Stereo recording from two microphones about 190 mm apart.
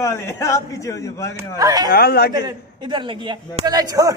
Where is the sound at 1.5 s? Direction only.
20° right (ahead or behind).